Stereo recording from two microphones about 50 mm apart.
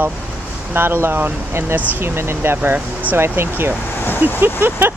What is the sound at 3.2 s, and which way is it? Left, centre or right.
Speech, right.